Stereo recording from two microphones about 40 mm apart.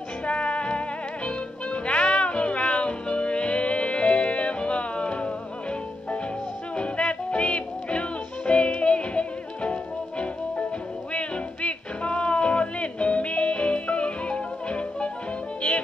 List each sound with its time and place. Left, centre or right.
0.2 s music: left